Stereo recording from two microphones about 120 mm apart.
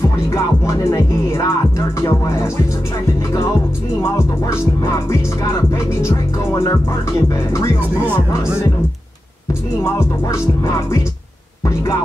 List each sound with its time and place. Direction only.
0.3 s music: 25° left (ahead or behind)
6.6 s music: 25° left (ahead or behind)
9.8 s music: 25° left (ahead or behind)